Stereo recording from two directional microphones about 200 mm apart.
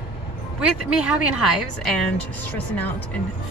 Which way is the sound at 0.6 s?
5° right (ahead or behind).